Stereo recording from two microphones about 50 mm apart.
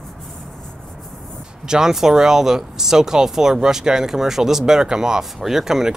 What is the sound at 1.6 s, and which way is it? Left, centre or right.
Speech, centre.